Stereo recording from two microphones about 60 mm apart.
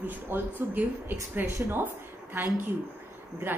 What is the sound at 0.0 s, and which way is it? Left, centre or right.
A woman's voice, right.